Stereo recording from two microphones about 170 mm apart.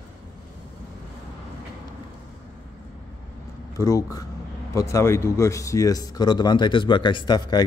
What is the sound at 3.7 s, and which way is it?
Speech, 20° left (ahead or behind).